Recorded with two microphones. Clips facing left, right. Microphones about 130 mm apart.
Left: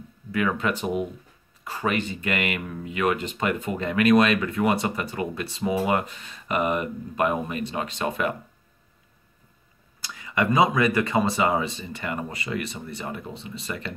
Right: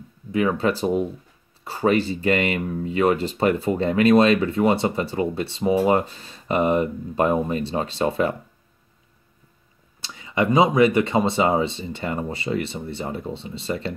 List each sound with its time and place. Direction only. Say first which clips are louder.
0.3 s speech: right 4 dB; 30° right (ahead or behind)
10.0 s speech: right 3 dB; 25° right (ahead or behind)